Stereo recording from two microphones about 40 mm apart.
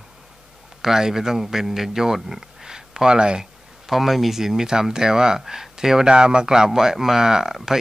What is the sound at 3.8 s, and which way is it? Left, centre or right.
A man's voice, centre.